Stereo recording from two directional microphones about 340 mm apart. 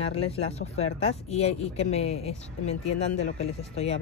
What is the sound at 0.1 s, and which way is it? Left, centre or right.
Speech, centre.